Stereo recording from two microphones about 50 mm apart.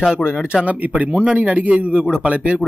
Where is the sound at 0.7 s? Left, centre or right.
Right.